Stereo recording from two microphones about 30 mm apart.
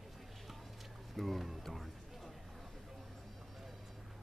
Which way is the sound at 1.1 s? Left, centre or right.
Centre.